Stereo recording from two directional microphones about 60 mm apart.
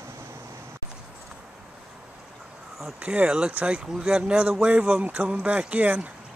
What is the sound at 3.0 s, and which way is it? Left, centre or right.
Speech, right.